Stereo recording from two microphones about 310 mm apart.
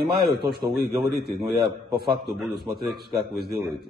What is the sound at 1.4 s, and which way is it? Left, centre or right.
Speech, centre.